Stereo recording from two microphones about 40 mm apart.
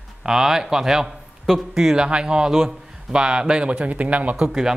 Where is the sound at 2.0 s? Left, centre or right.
Right.